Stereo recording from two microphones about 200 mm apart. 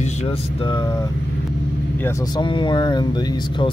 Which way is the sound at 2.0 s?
15° left (ahead or behind).